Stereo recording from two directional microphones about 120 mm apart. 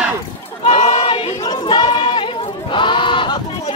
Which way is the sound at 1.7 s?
40° left (ahead or behind).